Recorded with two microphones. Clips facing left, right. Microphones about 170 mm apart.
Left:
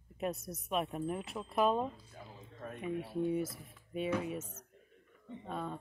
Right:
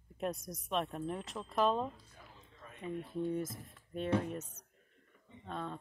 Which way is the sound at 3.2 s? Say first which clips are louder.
Left 2 dB; 10° left (ahead or behind).